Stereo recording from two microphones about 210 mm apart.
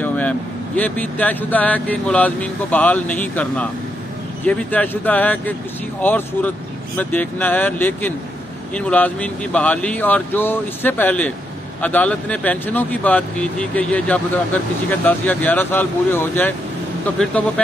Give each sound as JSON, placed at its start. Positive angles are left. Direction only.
{"t": 0.0, "sound": "speech", "side_deg": 5}